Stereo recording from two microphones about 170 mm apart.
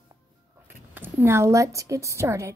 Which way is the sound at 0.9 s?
10° right (ahead or behind).